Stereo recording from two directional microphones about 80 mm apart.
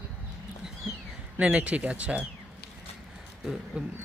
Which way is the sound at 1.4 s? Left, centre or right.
Centre.